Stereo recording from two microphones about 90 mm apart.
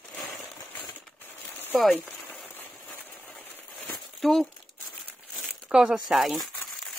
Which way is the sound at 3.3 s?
Centre (ahead or behind).